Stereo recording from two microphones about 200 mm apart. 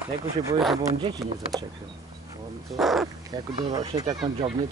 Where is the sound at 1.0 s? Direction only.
25° right (ahead or behind).